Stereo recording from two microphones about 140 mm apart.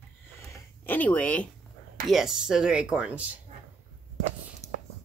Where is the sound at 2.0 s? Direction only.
Centre (ahead or behind).